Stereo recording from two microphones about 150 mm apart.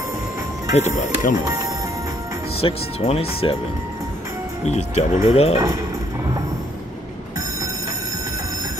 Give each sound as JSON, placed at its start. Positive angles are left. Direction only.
{"t": 0.7, "sound": "speech", "side_deg": 50}
{"t": 1.3, "sound": "speech", "side_deg": -25}
{"t": 2.6, "sound": "speech", "side_deg": 40}
{"t": 4.6, "sound": "speech", "side_deg": 45}